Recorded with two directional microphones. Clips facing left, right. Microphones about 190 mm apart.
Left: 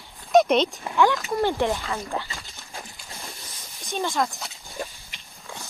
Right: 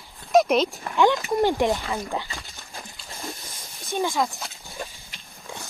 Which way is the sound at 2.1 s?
15° right (ahead or behind).